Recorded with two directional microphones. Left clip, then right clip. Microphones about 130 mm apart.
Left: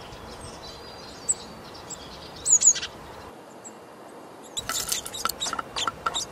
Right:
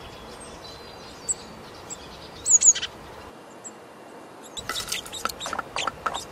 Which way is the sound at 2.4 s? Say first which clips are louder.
Right 2 dB; 5° right (ahead or behind).